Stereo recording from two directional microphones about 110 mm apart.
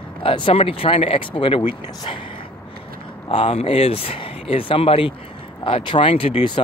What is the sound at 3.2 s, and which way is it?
Speech, 55° left (ahead or behind).